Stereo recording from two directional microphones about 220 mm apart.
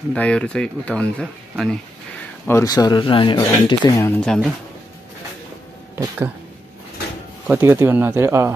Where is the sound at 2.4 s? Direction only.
15° left (ahead or behind).